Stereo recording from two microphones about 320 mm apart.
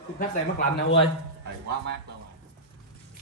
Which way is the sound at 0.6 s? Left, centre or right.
Left.